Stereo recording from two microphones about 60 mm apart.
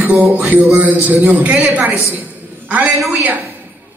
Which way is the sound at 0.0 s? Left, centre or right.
Right.